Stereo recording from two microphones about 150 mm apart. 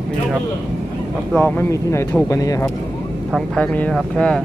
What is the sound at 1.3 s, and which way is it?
Speech, 15° left (ahead or behind).